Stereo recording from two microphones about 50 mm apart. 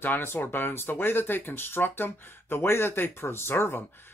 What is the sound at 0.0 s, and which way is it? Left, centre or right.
Speech, left.